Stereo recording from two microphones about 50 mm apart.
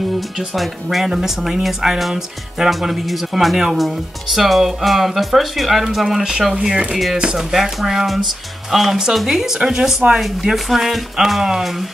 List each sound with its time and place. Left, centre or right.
0.6 s speech: centre